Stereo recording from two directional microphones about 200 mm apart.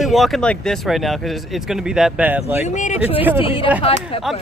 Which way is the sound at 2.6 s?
35° left (ahead or behind).